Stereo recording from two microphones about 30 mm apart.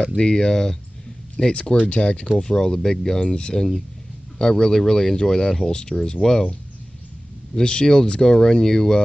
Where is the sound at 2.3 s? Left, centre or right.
Left.